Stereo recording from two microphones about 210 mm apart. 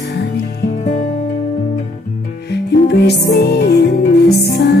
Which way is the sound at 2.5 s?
50° left (ahead or behind).